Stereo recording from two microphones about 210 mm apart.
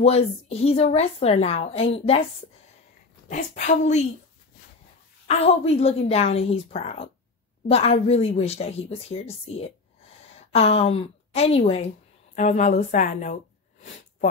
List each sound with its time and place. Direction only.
0.0 s a woman's voice: 30° left (ahead or behind)
3.3 s a woman's voice: 35° left (ahead or behind)
5.3 s a woman's voice: 30° left (ahead or behind)